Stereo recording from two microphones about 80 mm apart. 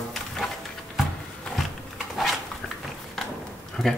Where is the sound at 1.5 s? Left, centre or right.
Centre.